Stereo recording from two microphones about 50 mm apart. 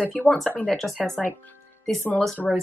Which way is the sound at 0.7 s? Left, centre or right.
Centre.